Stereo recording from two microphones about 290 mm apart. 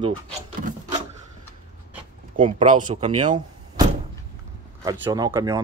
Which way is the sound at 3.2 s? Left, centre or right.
Right.